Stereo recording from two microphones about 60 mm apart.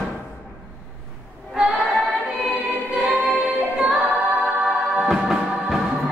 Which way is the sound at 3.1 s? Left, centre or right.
Centre.